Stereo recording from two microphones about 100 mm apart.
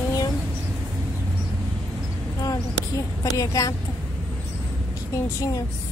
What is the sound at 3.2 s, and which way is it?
Speech, 35° left (ahead or behind).